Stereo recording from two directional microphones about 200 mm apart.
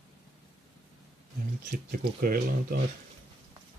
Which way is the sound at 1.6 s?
45° right (ahead or behind).